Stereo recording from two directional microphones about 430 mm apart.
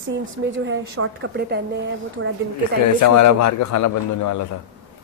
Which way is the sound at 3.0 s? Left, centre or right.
Left.